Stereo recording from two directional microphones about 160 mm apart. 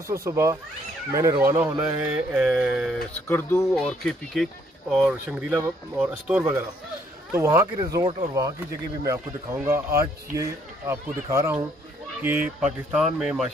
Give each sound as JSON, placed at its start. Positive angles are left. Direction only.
{"t": 0.1, "sound": "speech", "side_deg": -20}
{"t": 2.0, "sound": "speech", "side_deg": -5}
{"t": 3.2, "sound": "speech", "side_deg": 15}
{"t": 3.7, "sound": "speech", "side_deg": 0}